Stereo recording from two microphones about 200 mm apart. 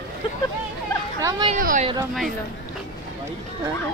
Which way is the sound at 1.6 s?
45° right (ahead or behind).